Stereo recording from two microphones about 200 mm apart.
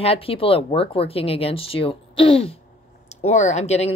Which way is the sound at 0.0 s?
30° left (ahead or behind).